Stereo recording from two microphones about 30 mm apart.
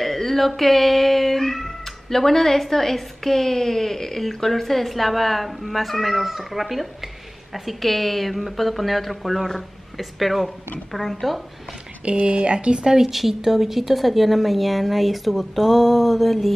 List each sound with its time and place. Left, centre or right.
0.0 s a woman's voice: centre
12.0 s speech: right
12.8 s a woman's voice: centre
13.1 s speech: centre